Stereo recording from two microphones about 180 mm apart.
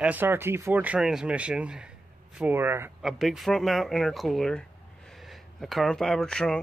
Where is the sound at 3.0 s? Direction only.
Centre (ahead or behind).